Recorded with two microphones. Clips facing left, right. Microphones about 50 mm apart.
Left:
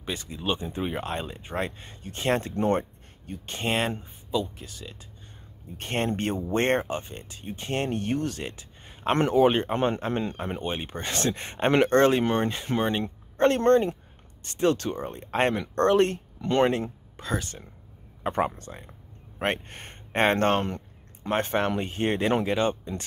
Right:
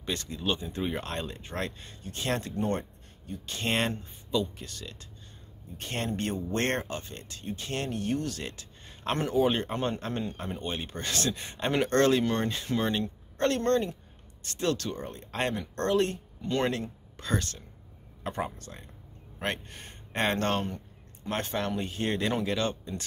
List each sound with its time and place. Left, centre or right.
0.0 s speech: centre; by 3.6 s left
3.6 s speech: centre
5.8 s speech: left; by 7.6 s centre
7.6 s speech: left
9.1 s speech: left
9.5 s speech: left
11.9 s speech: left
16.4 s speech: left
17.2 s speech: centre
18.3 s speech: left
19.3 s speech: left
20.6 s a sound: left
21.3 s speech: left